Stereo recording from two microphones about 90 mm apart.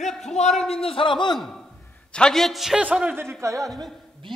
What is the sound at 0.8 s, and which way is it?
Speech, 85° left.